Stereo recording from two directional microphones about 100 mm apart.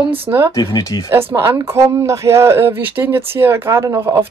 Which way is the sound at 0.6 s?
40° left (ahead or behind).